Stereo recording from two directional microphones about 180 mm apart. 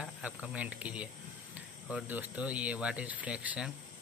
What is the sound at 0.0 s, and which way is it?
Speech, 5° right (ahead or behind).